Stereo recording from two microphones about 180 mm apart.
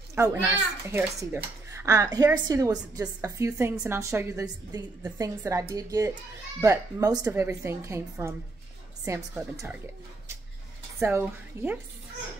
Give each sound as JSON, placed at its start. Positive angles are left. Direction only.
{"t": 0.1, "sound": "a child's voice", "side_deg": -15}
{"t": 11.0, "sound": "a child's voice", "side_deg": -15}